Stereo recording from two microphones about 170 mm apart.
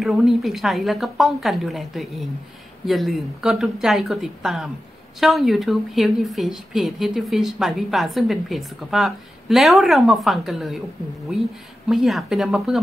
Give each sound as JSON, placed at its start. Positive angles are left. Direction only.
{"t": 0.0, "sound": "a woman's voice", "side_deg": 0}
{"t": 11.9, "sound": "a woman's voice", "side_deg": 0}